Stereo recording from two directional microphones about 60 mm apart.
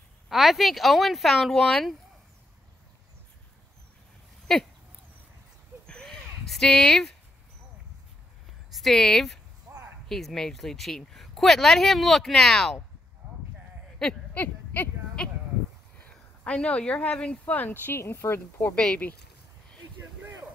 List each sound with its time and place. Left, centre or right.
0.3 s speech: centre
4.5 s speech: centre
5.9 s a sound: centre
6.7 s speech: centre
8.7 s speech: centre
9.7 s a sound: right
10.0 s speech: centre
14.0 s speech: centre
14.3 s speech: left
16.4 s speech: left
17.6 s speech: left
17.9 s speech: left